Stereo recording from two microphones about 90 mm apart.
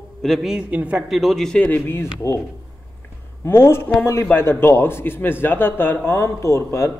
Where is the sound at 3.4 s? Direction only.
25° left (ahead or behind).